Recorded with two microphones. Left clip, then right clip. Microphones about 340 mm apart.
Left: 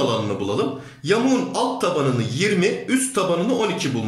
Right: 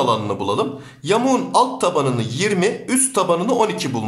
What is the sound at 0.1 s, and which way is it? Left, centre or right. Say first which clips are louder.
A man's voice: right 3 dB; centre.